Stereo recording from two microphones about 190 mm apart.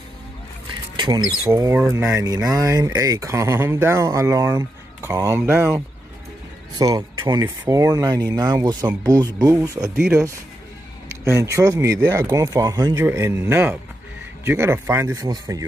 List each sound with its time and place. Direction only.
0.9 s speech: 25° right (ahead or behind)
11.2 s speech: 15° right (ahead or behind)